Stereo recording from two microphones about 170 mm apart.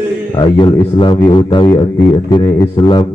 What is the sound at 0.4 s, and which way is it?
Speech, 25° left (ahead or behind).